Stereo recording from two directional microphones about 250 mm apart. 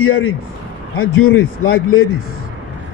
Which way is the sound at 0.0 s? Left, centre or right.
Left.